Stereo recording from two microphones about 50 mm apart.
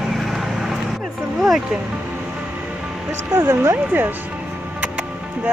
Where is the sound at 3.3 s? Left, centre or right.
Right.